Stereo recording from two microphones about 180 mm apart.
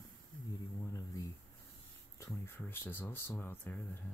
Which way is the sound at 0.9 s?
15° left (ahead or behind).